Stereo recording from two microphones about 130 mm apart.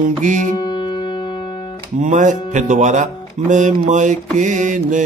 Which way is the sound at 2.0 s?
70° right (ahead or behind).